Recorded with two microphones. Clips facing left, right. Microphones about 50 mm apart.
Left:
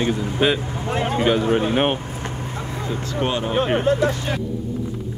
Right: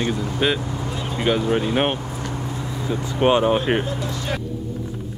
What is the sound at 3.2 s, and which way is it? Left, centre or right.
Speech, right.